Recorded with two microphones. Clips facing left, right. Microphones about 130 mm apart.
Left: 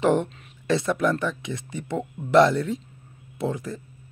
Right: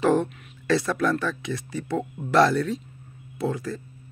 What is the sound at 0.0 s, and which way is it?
Speech, 25° left (ahead or behind).